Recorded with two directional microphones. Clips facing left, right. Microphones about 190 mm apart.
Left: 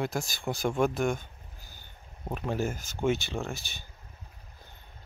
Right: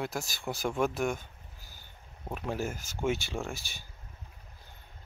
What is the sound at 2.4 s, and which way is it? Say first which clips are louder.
Speech: left 3 dB; 5° right (ahead or behind).